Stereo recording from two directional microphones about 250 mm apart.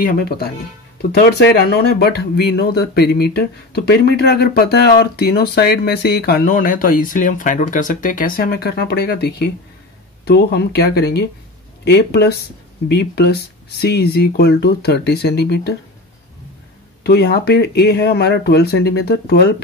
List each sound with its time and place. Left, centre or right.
0.0 s speech: left
17.0 s speech: left